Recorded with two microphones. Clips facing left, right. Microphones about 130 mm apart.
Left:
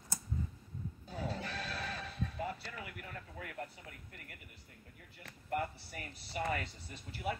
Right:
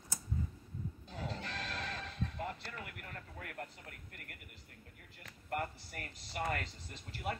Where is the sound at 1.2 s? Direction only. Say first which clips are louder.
Left 2 dB; 5° left (ahead or behind).